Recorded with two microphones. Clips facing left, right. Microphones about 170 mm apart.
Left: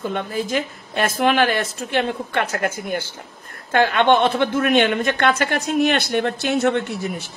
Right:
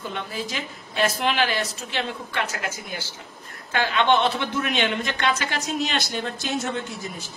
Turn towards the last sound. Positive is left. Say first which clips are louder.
# left 7 dB
turn(degrees=65)  # may be behind; listen again after turning